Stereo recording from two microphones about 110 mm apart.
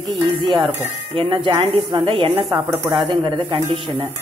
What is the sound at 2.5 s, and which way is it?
Speech, 25° right (ahead or behind).